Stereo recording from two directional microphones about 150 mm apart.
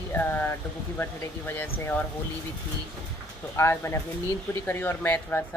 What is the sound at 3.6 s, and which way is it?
Speech, 20° left (ahead or behind).